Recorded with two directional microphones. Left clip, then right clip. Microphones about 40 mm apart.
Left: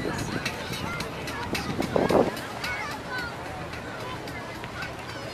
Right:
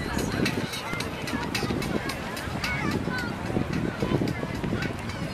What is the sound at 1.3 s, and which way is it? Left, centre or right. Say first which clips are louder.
Music: right 3 dB; right.